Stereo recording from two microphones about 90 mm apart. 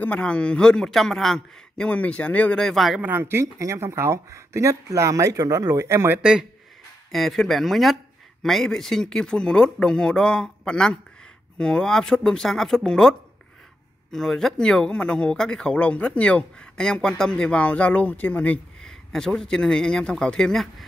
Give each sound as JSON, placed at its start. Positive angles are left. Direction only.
{"t": 0.0, "sound": "speech", "side_deg": 15}
{"t": 1.9, "sound": "speech", "side_deg": 15}
{"t": 2.6, "sound": "speech", "side_deg": 0}
{"t": 3.0, "sound": "speech", "side_deg": -25}
{"t": 6.1, "sound": "speech", "side_deg": -10}
{"t": 7.1, "sound": "speech", "side_deg": 0}
{"t": 14.1, "sound": "speech", "side_deg": 5}
{"t": 18.8, "sound": "a man's voice", "side_deg": 5}